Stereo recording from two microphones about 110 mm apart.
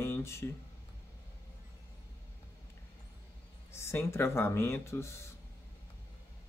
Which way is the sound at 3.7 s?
25° left (ahead or behind).